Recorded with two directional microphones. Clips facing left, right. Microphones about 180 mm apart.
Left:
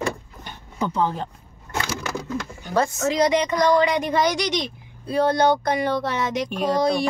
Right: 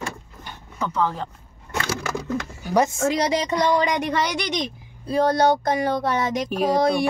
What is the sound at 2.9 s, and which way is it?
Speech, 50° right (ahead or behind).